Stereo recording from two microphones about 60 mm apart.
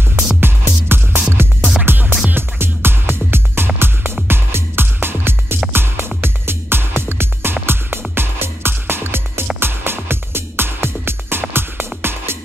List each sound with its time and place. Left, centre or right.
0.4 s music: right